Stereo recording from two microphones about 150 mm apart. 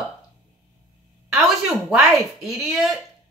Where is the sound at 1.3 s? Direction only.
Centre (ahead or behind).